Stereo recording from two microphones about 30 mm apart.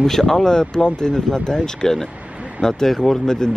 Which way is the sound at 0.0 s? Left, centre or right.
Centre.